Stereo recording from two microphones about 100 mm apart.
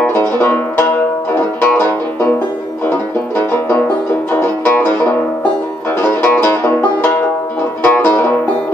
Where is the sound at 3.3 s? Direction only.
20° left (ahead or behind).